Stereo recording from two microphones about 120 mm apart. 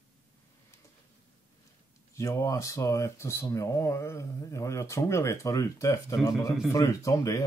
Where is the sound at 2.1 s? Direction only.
25° left (ahead or behind).